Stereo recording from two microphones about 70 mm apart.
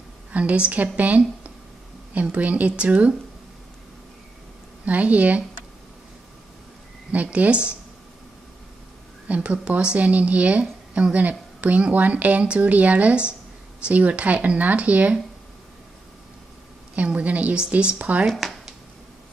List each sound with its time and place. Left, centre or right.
0.3 s a woman's voice: centre
4.8 s a woman's voice: right
7.1 s a woman's voice: centre
9.3 s a woman's voice: centre
16.9 s a woman's voice: centre
18.3 s a sound: centre